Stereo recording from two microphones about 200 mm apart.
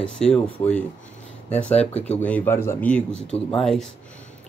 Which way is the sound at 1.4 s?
5° left (ahead or behind).